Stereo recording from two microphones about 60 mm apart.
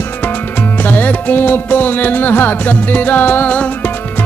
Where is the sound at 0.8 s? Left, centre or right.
Left.